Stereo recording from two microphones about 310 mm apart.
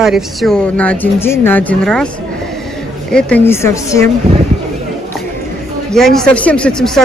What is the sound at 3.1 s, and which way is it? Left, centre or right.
Speech, centre.